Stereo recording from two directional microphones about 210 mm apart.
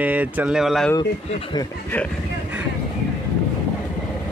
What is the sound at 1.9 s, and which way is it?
Speech, 10° left (ahead or behind).